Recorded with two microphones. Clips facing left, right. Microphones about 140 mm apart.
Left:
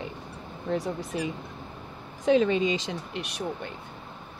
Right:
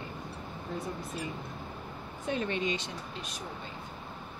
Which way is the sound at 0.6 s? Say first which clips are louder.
Left 9 dB; 80° left.